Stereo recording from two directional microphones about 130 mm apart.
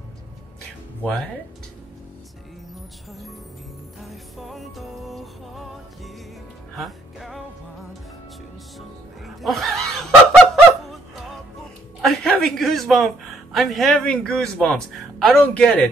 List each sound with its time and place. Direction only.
4.1 s music: centre (ahead or behind)
8.7 s music: centre (ahead or behind)
12.0 s a man's voice: centre (ahead or behind)